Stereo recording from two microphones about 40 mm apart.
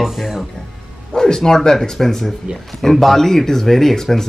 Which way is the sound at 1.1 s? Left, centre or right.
Centre.